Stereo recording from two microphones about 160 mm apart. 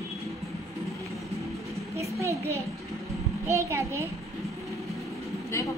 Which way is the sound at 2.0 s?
20° right (ahead or behind).